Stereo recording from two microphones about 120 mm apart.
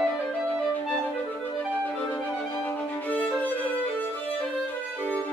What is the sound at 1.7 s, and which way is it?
Violin, 10° left (ahead or behind).